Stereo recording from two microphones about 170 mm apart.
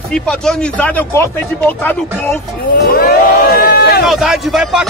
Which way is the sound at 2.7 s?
65° left (ahead or behind).